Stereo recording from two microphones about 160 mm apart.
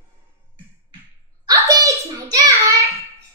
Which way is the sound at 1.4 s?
20° right (ahead or behind).